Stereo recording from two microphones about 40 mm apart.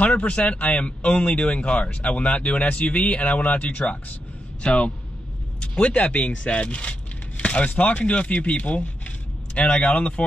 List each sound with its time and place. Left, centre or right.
0.0 s speech: left
5.6 s a sound: left
5.9 s speech: left